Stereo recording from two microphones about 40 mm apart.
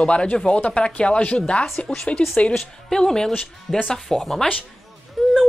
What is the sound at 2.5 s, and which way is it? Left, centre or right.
A woman's voice, centre.